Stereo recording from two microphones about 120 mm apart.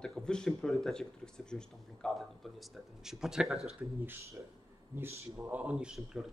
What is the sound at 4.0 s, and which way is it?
Speech, 20° right (ahead or behind).